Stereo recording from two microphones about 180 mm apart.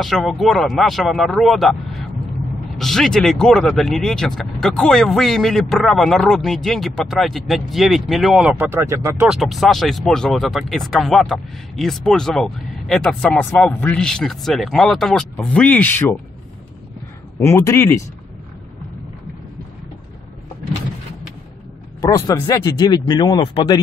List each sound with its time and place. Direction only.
0.0 s speech: centre (ahead or behind); by 9.3 s 15° right (ahead or behind)
9.3 s speech: centre (ahead or behind)
17.4 s speech: 15° left (ahead or behind)
22.0 s speech: 20° left (ahead or behind)